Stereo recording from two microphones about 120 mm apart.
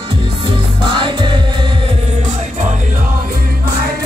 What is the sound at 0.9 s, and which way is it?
Music, 40° right (ahead or behind).